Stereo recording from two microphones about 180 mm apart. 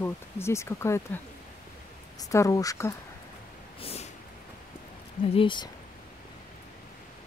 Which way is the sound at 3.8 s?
35° left (ahead or behind).